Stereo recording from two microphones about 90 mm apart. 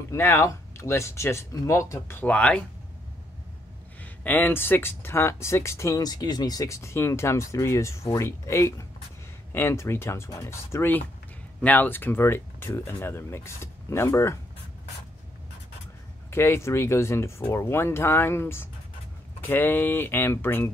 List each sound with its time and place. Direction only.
0.1 s speech: 30° left (ahead or behind)
2.2 s speech: 15° left (ahead or behind)
4.0 s speech: 20° left (ahead or behind)
16.3 s speech: 30° left (ahead or behind)